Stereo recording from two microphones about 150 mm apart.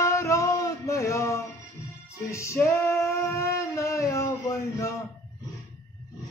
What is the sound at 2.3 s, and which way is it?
Female singing, 20° left (ahead or behind).